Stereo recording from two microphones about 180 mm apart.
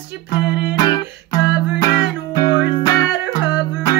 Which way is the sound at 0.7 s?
25° left (ahead or behind).